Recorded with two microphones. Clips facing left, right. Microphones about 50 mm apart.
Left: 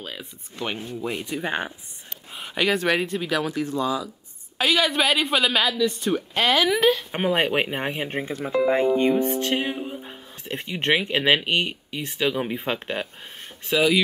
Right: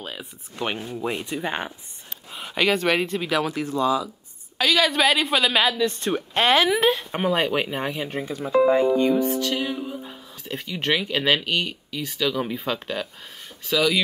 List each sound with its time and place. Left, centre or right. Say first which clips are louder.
0.0 s speech: right 1 dB; centre
0.6 s speech: right 2 dB; right
1.4 s speech: left 1 dB; centre
3.4 s a woman's voice: even; right
3.7 s speech: right 3 dB; left
5.0 s speech: right 1 dB; centre
5.6 s a woman's voice: right 1 dB; right
5.9 s a woman's voice: even; right
7.1 s speech: even; centre
7.9 s speech: left 1 dB; left